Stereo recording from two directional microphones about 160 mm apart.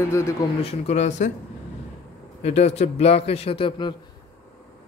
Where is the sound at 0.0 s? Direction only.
15° left (ahead or behind).